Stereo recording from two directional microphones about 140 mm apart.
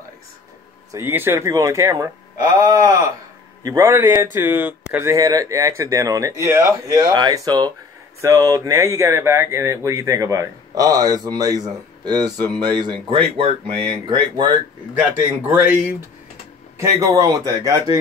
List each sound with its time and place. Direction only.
0.9 s speech: 15° right (ahead or behind)
15.0 s speech: 10° right (ahead or behind)